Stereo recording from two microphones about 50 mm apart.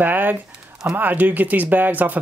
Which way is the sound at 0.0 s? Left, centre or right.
Right.